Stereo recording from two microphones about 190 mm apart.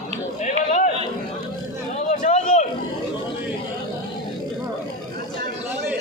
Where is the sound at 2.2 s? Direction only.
40° left (ahead or behind).